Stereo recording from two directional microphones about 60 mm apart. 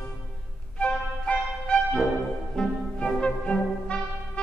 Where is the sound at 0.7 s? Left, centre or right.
Centre.